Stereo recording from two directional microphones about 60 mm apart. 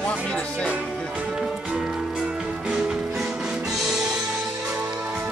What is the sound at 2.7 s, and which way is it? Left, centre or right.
Music, centre.